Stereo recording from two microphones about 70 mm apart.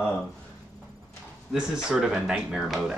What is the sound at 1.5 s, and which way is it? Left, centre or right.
Speech, centre.